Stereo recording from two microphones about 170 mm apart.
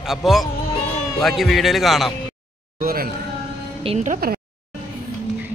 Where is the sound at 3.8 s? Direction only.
40° right (ahead or behind).